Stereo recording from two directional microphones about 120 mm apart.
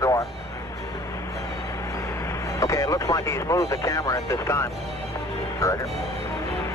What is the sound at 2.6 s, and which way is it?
Speech, 30° left (ahead or behind).